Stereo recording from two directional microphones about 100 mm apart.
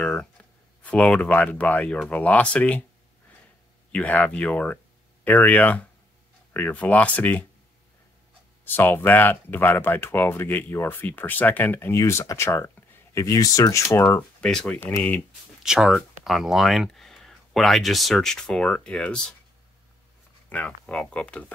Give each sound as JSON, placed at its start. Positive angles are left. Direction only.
{"t": 0.1, "sound": "speech", "side_deg": 10}
{"t": 3.9, "sound": "speech", "side_deg": 15}
{"t": 8.6, "sound": "speech", "side_deg": 20}
{"t": 12.0, "sound": "speech", "side_deg": 30}
{"t": 13.2, "sound": "speech", "side_deg": 35}
{"t": 14.4, "sound": "speech", "side_deg": 5}
{"t": 15.6, "sound": "speech", "side_deg": -5}
{"t": 20.4, "sound": "speech", "side_deg": 15}